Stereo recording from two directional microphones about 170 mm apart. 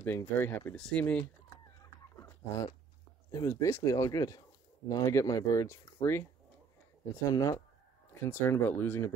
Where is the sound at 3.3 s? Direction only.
20° left (ahead or behind).